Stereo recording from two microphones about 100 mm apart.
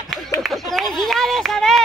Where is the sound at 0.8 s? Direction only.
5° left (ahead or behind).